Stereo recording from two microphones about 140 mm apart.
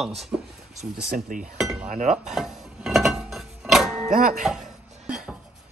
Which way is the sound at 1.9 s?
60° right (ahead or behind).